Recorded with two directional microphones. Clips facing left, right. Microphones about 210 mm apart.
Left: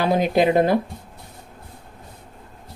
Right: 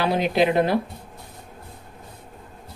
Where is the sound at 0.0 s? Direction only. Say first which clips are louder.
Left 2 dB; 45° left (ahead or behind).